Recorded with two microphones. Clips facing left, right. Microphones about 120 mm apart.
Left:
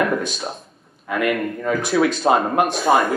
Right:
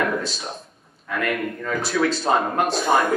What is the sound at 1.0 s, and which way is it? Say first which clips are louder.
A man's voice: left 4 dB; 10° left (ahead or behind).